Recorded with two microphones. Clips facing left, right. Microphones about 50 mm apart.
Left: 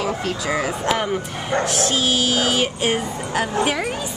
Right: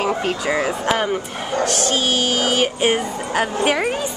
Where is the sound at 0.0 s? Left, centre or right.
Right.